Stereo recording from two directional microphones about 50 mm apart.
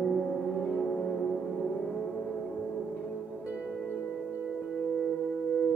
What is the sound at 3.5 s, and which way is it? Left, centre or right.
Music, right.